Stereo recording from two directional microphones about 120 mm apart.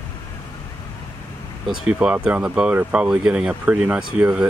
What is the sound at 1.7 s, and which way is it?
Speech, 5° right (ahead or behind).